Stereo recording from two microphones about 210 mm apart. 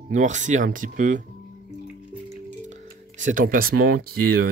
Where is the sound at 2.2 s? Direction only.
35° right (ahead or behind).